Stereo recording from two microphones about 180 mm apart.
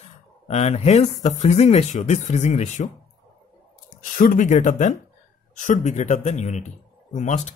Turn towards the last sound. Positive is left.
turn(degrees=40)  # may be behind; listen again after turning